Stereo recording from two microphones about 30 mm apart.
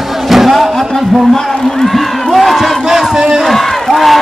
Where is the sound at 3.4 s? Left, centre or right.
Centre.